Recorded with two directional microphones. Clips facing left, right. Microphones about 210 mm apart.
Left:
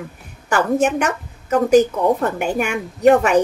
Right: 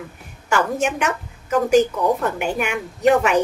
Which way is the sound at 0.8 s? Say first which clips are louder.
Left 4 dB; 35° left (ahead or behind).